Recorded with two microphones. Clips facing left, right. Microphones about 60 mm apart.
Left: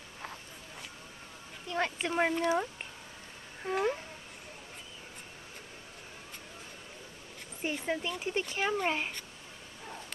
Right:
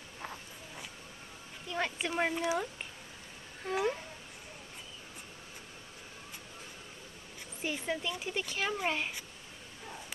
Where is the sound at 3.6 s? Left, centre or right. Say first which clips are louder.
Left 1 dB; centre.